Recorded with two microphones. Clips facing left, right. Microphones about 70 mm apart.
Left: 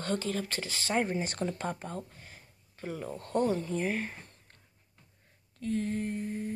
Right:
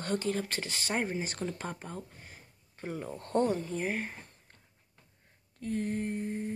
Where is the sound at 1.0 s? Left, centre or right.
Centre.